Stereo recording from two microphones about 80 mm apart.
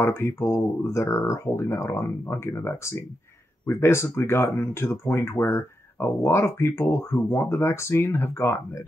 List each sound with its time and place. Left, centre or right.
0.0 s speech: left